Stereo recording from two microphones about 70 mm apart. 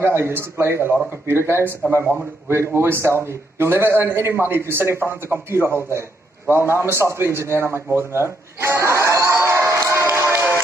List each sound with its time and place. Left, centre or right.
0.0 s a man's voice: right
9.4 s music: right